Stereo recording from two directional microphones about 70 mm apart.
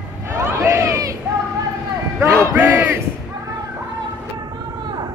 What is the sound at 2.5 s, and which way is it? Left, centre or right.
Battle cry, right.